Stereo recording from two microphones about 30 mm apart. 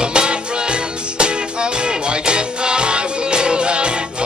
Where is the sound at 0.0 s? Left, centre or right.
Right.